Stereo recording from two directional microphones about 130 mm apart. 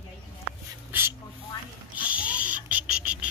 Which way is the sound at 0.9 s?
15° right (ahead or behind).